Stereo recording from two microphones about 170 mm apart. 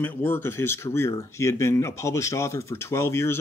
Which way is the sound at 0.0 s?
10° left (ahead or behind).